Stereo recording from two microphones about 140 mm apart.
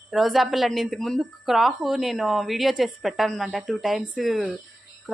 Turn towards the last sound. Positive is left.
turn(degrees=0)  # may be behind; listen again after turning